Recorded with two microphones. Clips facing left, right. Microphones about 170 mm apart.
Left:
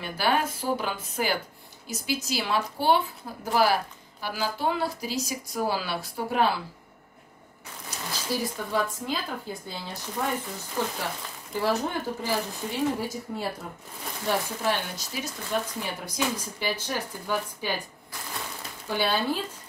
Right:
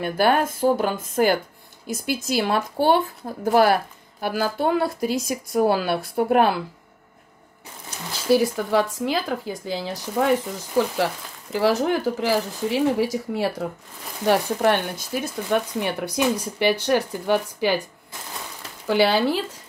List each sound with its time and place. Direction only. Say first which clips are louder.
0.0 s speech: right 6 dB; 55° right (ahead or behind)
3.2 s speech: right 7 dB; 40° right (ahead or behind)
4.2 s a woman's voice: right 6 dB; 55° right (ahead or behind)
8.3 s speech: right 11 dB; 80° right
11.5 s speech: right 7 dB; 90° right
14.2 s speech: right 8 dB; 70° right (ahead or behind)
18.9 s speech: right 8 dB; 90° right